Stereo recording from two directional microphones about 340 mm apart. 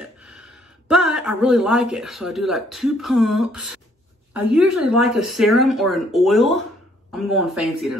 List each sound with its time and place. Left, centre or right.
0.0 s speech: centre